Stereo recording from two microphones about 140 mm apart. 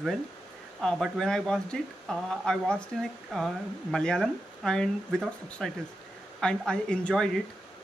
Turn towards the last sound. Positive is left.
turn(degrees=5)  # may be behind; listen again after turning